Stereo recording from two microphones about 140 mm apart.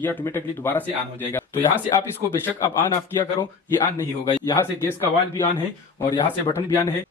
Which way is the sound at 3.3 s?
20° left (ahead or behind).